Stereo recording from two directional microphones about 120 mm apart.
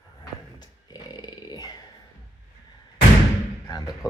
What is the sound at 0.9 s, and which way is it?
Dog, 35° left (ahead or behind).